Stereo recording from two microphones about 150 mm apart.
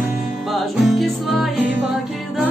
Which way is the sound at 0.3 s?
Centre (ahead or behind).